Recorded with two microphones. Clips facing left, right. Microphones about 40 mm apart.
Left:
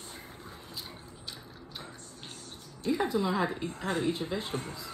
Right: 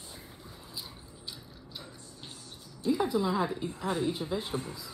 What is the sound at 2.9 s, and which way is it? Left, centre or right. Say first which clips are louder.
Speech: even; left.